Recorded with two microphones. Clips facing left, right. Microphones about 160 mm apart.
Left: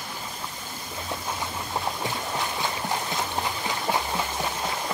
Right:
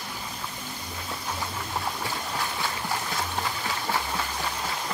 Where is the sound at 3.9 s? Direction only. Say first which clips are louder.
Left 2 dB; 20° left (ahead or behind).